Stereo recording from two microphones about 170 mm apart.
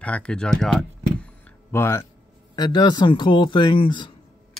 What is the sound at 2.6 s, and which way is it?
Speech, 25° left (ahead or behind).